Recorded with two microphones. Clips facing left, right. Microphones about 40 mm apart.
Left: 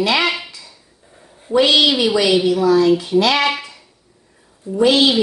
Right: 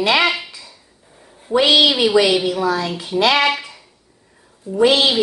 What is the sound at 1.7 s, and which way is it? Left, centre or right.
A woman's voice, centre.